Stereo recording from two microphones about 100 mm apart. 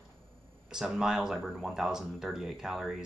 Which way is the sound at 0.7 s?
5° right (ahead or behind).